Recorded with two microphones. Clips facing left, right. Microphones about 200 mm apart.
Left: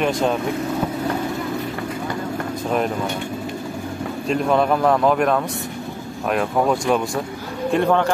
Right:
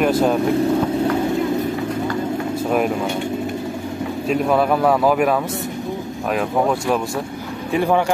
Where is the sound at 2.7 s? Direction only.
5° right (ahead or behind).